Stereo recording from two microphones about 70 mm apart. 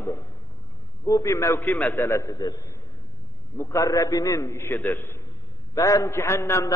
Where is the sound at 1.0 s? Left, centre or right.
Left.